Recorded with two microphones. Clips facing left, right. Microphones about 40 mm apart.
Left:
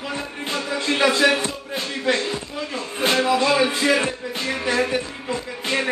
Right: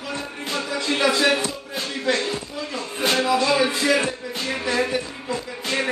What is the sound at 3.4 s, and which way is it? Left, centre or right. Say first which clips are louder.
Music: left 1 dB; centre.